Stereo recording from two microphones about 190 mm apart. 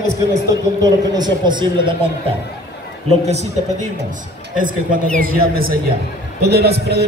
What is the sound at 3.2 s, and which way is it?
A man's voice, 35° right (ahead or behind).